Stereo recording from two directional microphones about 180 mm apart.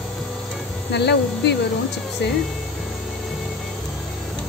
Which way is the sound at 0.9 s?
70° left (ahead or behind).